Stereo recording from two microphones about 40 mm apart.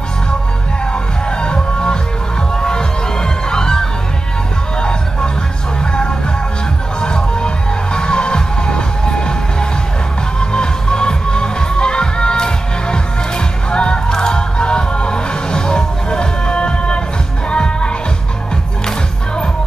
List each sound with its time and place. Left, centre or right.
1.4 s music: left
7.0 s music: left